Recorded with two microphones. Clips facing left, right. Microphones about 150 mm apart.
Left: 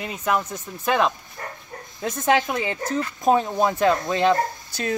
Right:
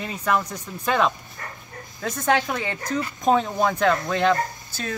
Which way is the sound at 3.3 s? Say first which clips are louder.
Left 1 dB; 20° left (ahead or behind).